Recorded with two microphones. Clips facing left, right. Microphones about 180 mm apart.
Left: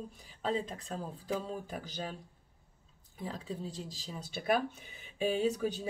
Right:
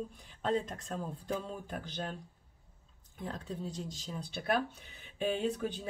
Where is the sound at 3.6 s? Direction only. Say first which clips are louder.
Right 1 dB; 30° left (ahead or behind).